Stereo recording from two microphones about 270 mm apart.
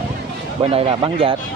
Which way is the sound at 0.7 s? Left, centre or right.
Centre.